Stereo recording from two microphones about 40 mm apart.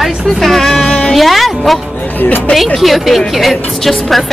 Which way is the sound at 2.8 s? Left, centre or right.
Centre.